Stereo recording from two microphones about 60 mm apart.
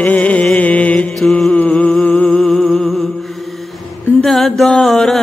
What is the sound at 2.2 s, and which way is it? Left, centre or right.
Humming, centre.